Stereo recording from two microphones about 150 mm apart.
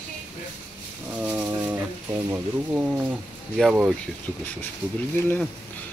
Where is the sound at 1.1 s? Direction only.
10° right (ahead or behind).